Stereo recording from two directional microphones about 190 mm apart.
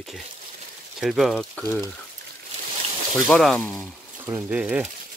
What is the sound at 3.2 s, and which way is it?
Speech, centre (ahead or behind).